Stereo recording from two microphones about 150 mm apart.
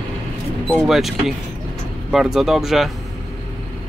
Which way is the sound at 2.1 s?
Centre (ahead or behind).